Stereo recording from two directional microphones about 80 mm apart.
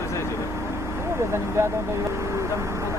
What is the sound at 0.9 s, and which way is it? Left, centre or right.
Vehicle, right.